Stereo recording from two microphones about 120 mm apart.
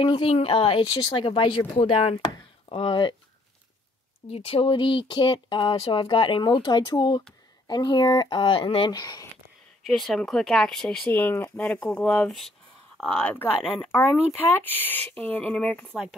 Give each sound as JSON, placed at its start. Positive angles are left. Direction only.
{"t": 0.0, "sound": "speech", "side_deg": 45}
{"t": 2.2, "sound": "chop", "side_deg": 45}
{"t": 4.3, "sound": "speech", "side_deg": 55}
{"t": 9.8, "sound": "speech", "side_deg": 0}
{"t": 11.1, "sound": "speech", "side_deg": 15}